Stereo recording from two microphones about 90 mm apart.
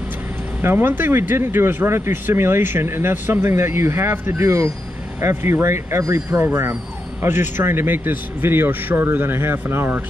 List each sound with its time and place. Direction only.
0.6 s speech: 25° right (ahead or behind)